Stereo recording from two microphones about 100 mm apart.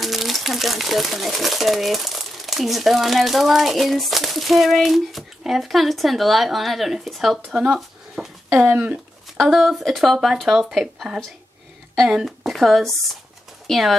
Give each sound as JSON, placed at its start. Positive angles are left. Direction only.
{"t": 0.0, "sound": "speech", "side_deg": 0}
{"t": 8.5, "sound": "speech", "side_deg": -15}
{"t": 9.4, "sound": "speech", "side_deg": 0}